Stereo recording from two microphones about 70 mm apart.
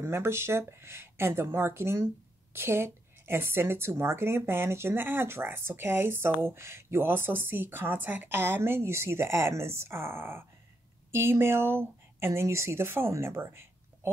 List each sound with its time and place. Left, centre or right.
0.0 s speech: right